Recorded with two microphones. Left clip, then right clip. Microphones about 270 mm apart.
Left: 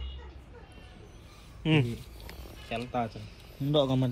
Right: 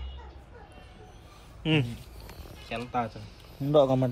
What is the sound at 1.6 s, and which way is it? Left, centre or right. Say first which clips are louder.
Speech: even; centre.